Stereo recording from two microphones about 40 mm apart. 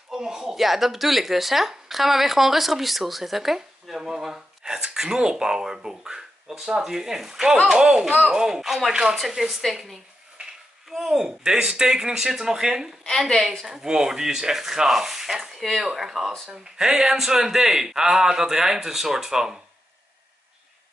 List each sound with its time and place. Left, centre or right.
0.1 s speech: centre
10.4 s a sound: right
10.9 s speech: centre
13.3 s a woman's voice: centre
13.7 s a woman's voice: centre